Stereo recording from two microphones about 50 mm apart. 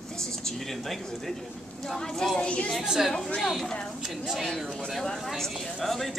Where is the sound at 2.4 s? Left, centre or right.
Left.